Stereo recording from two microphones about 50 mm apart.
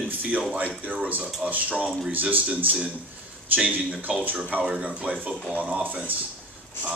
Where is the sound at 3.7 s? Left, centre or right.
Right.